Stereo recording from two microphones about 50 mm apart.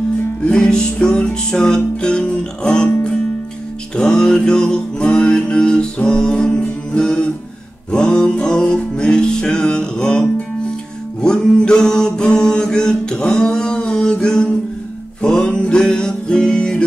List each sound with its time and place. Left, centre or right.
0.5 s music: centre